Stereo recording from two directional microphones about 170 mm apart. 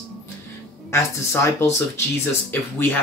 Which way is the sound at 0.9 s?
15° left (ahead or behind).